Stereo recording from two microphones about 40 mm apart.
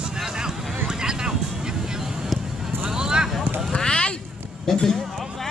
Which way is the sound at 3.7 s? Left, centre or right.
Left.